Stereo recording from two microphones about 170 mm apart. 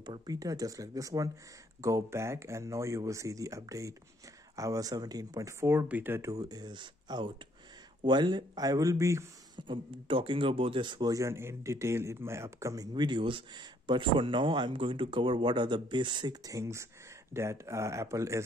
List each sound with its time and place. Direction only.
0.0 s speech: 25° right (ahead or behind)
9.6 s speech: 30° right (ahead or behind)